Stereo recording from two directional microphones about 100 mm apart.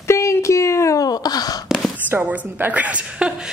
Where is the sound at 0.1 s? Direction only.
30° left (ahead or behind).